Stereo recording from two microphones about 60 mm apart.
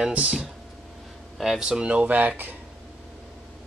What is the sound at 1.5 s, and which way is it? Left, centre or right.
Speech, centre.